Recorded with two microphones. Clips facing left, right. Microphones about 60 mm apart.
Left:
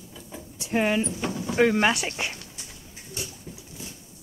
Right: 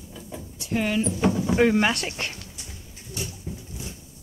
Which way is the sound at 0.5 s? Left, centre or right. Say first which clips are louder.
Left 1 dB; left.